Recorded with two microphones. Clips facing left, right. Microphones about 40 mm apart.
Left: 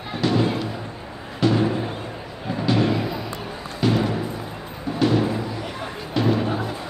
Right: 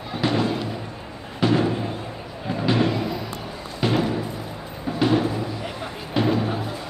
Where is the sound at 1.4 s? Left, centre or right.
Centre.